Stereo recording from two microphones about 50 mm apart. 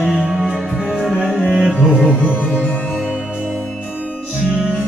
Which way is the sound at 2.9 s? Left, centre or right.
Centre.